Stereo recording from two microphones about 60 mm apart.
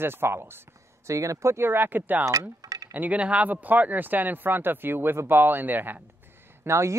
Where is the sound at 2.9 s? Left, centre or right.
Right.